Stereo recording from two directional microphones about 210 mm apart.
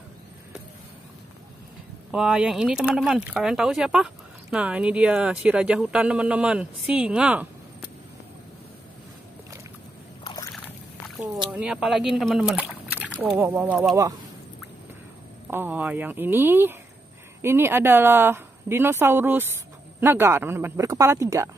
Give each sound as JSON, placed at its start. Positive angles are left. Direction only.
{"t": 2.0, "sound": "speech", "side_deg": -5}
{"t": 10.2, "sound": "a sound", "side_deg": 20}
{"t": 11.5, "sound": "speech", "side_deg": -5}
{"t": 15.5, "sound": "a woman's voice", "side_deg": -10}